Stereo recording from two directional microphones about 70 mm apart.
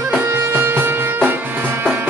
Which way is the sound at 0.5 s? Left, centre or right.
Right.